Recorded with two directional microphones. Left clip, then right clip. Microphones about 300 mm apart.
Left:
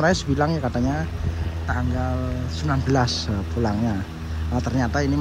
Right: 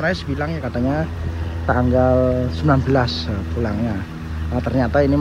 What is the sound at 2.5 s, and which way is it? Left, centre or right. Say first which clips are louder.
Speech: right 5 dB; centre.